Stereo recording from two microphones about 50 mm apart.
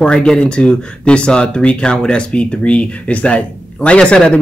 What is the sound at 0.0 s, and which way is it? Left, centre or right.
Speech, centre.